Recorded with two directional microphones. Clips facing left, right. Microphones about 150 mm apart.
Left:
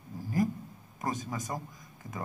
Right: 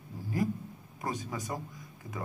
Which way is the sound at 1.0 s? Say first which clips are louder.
Left 1 dB; 45° left (ahead or behind).